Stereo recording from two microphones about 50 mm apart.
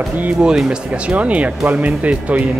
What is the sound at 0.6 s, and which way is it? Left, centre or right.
Speech, right.